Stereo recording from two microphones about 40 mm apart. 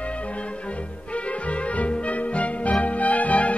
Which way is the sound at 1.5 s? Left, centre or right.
Left.